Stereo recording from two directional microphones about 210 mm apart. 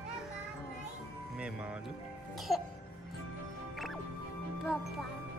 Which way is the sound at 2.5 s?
15° left (ahead or behind).